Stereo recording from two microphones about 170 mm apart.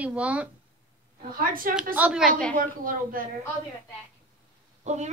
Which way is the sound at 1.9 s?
5° right (ahead or behind).